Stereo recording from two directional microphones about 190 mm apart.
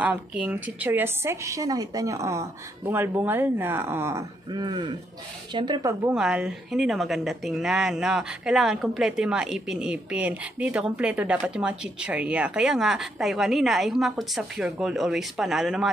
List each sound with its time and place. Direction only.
0.0 s a woman's voice: 5° right (ahead or behind)
6.1 s a woman's voice: 5° right (ahead or behind)